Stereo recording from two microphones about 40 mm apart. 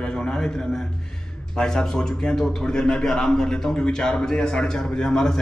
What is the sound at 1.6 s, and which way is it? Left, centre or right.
A man's voice, centre.